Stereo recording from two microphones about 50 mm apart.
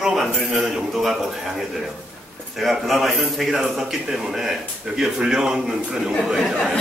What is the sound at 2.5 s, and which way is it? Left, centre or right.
A man's voice, centre.